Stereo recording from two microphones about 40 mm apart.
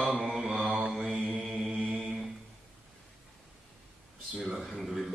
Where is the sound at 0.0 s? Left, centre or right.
Centre.